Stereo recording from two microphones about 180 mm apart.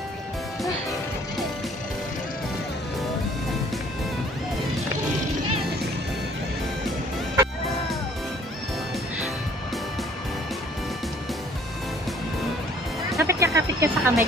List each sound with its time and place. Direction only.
13.2 s music: 15° right (ahead or behind)